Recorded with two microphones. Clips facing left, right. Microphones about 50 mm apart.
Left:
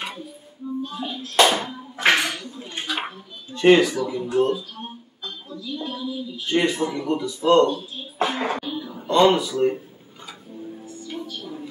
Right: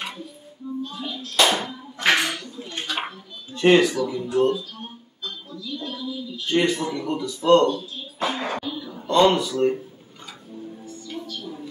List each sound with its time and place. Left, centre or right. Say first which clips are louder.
0.8 s a man's voice: left 2 dB; left; by 4.6 s centre
5.2 s a man's voice: even; centre
7.7 s speech: even; left
8.7 s speech: even; centre
11.1 s music: left 1 dB; centre